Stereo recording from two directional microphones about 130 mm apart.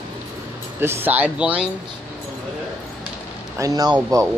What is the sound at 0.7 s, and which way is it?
Speech, 15° right (ahead or behind).